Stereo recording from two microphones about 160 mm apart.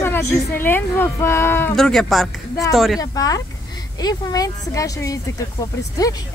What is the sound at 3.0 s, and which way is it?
Speech, 25° left (ahead or behind).